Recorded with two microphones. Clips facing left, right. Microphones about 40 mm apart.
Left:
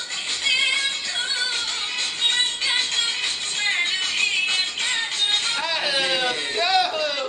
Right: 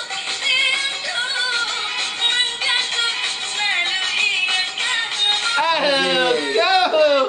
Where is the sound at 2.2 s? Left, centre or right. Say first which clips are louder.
Right 3 dB; right.